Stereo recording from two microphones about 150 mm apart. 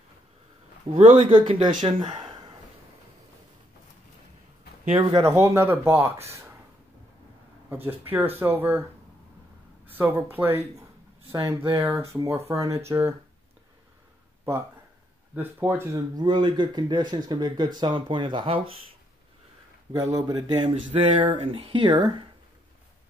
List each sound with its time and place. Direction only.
0.9 s speech: 45° right (ahead or behind)
1.3 s speech: 30° right (ahead or behind)
5.2 s speech: 20° right (ahead or behind)
7.7 s speech: 15° right (ahead or behind)
9.8 s speech: 15° right (ahead or behind)
11.7 s speech: 20° right (ahead or behind)
15.3 s speech: 15° right (ahead or behind)
16.2 s speech: 30° right (ahead or behind)
19.9 s speech: 25° right (ahead or behind)